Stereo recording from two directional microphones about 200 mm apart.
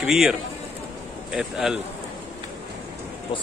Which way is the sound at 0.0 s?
Centre (ahead or behind).